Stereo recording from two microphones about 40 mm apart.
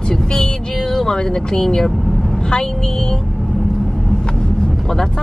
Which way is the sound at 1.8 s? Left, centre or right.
Centre.